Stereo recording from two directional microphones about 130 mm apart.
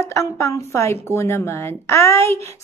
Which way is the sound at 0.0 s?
20° left (ahead or behind).